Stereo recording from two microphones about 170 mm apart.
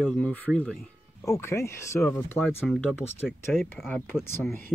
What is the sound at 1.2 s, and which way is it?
Speech, 15° left (ahead or behind).